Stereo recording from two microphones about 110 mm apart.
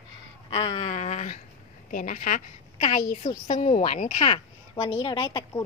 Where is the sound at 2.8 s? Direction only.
90° left.